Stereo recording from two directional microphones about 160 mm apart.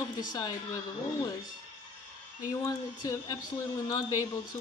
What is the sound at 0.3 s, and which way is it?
Speech, 25° left (ahead or behind).